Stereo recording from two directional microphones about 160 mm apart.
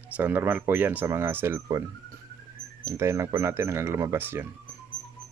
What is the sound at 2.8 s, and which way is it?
Speech, 15° right (ahead or behind).